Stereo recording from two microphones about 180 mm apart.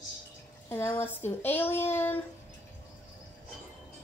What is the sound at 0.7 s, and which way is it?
Speech, 15° left (ahead or behind).